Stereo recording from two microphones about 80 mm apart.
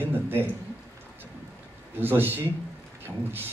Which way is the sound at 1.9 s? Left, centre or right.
Right.